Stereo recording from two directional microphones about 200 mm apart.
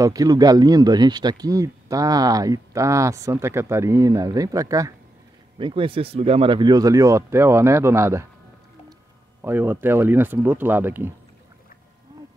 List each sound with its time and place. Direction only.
0.0 s speech: 15° right (ahead or behind)
9.4 s speech: 10° right (ahead or behind)